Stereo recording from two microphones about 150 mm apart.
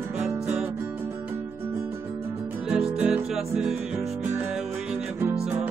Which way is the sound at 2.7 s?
5° right (ahead or behind).